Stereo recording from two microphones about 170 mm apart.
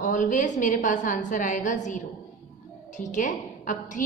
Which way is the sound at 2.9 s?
50° left (ahead or behind).